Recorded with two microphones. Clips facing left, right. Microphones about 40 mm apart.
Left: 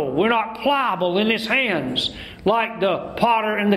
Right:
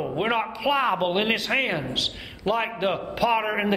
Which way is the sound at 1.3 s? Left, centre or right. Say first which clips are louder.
Left 4 dB; centre.